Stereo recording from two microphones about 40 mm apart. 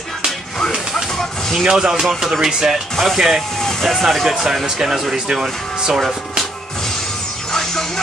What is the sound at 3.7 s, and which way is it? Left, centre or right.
Vehicle, centre.